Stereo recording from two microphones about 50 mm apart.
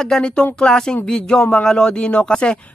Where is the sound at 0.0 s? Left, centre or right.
Centre.